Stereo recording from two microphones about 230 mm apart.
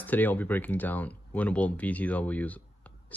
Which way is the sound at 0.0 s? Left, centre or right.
Centre.